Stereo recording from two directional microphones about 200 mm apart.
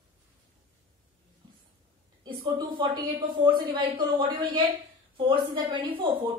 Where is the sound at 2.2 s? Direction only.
25° right (ahead or behind).